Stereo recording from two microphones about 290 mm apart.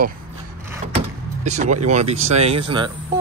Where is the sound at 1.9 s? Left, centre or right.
Right.